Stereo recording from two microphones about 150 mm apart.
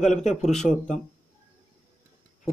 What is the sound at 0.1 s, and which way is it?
Speech, 50° left (ahead or behind).